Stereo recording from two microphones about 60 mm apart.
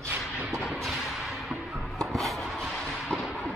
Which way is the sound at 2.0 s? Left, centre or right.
Centre.